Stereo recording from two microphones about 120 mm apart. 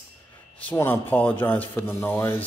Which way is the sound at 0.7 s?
15° left (ahead or behind).